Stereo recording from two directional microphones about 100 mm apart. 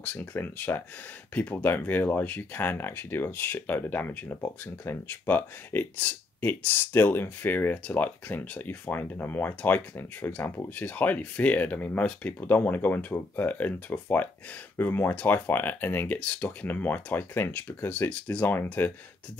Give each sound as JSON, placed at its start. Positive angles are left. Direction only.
{"t": 0.0, "sound": "speech", "side_deg": 15}